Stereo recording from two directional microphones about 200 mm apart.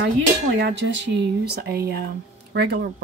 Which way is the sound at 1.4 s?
50° right (ahead or behind).